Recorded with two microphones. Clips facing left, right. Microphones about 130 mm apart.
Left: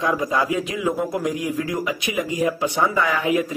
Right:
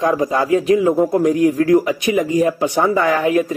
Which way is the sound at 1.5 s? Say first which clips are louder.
Right 11 dB; 45° right (ahead or behind).